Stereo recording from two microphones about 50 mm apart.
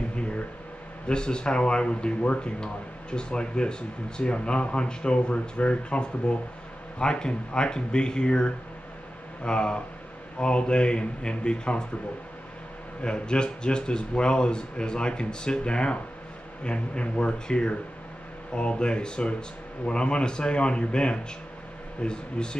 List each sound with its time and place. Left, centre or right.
1.0 s speech: centre
13.0 s speech: centre